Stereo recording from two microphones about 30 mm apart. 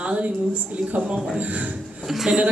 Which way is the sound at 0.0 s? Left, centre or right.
Right.